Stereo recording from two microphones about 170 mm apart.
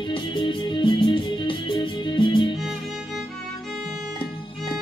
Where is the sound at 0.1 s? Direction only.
30° left (ahead or behind).